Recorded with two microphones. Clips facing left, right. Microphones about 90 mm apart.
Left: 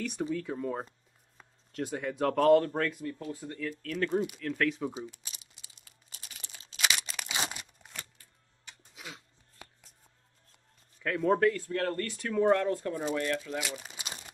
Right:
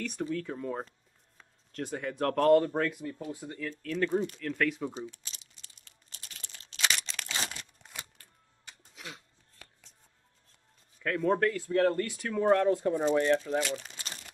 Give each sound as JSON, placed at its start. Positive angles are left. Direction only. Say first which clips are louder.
{"t": 0.2, "sound": "speech", "louder": "left 1 dB", "side_deg": 5}
{"t": 3.8, "sound": "crumpling", "louder": "right 1 dB", "side_deg": 0}
{"t": 8.9, "sound": "a sound", "louder": "right 1 dB", "side_deg": 5}
{"t": 9.6, "sound": "music", "louder": "left 4 dB", "side_deg": 20}
{"t": 11.0, "sound": "speech", "louder": "left 1 dB", "side_deg": 0}
{"t": 11.7, "sound": "speech", "louder": "right 5 dB", "side_deg": -15}
{"t": 13.1, "sound": "speech", "louder": "right 6 dB", "side_deg": -30}
{"t": 13.6, "sound": "crumpling", "louder": "right 5 dB", "side_deg": 10}